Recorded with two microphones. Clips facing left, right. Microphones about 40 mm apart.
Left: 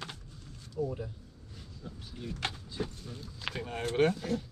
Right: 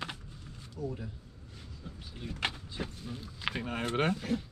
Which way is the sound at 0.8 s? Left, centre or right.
Centre.